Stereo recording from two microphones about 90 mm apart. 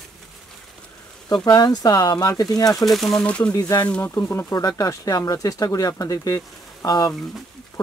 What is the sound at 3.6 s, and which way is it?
Speech, 45° left (ahead or behind).